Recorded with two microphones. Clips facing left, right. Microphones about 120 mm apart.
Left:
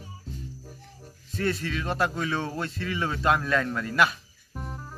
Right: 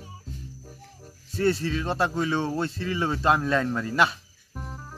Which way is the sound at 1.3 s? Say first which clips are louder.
Right 4 dB; 30° right (ahead or behind).